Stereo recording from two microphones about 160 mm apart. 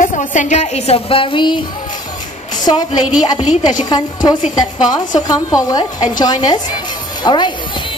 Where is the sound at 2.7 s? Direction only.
30° left (ahead or behind).